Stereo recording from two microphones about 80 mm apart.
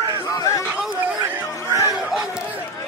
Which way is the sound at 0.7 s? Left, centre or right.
Centre.